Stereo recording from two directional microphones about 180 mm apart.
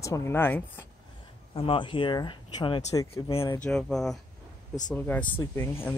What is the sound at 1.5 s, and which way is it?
Speech, 30° left (ahead or behind).